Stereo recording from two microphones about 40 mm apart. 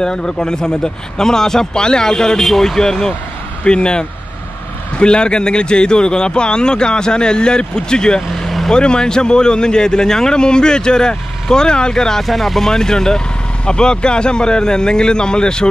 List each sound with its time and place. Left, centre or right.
0.0 s speech: centre
12.2 s speech: centre
12.7 s speech: centre